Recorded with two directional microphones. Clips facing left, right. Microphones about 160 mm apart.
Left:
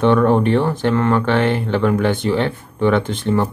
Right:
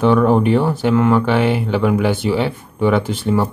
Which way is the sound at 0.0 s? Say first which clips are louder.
Right 1 dB; 5° right (ahead or behind).